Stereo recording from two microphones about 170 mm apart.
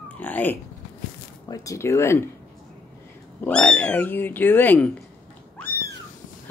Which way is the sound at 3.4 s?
10° left (ahead or behind).